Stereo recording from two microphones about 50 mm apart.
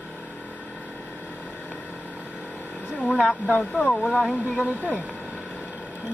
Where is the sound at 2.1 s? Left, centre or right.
Right.